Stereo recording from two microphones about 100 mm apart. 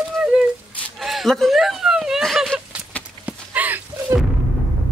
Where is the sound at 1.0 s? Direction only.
Centre (ahead or behind).